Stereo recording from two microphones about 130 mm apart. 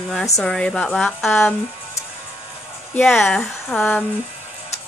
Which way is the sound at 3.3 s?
5° left (ahead or behind).